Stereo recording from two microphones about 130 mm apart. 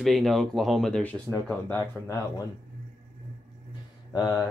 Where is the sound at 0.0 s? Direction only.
Centre (ahead or behind).